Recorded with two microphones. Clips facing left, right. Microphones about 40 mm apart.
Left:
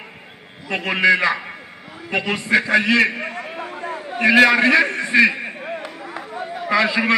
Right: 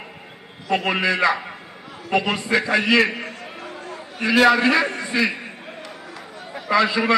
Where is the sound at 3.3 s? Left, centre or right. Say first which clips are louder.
Left 5 dB; centre.